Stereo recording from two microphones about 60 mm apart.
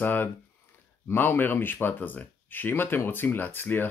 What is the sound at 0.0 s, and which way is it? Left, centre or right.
Speech, left.